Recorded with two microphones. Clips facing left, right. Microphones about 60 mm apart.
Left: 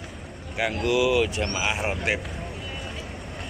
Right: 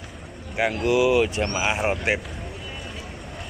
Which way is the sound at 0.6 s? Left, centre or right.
Centre.